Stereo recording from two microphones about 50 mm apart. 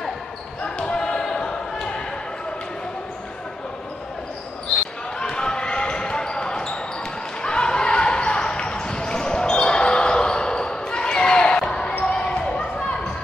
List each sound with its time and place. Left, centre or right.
0.7 s basketball bounce: centre
5.2 s basketball bounce: centre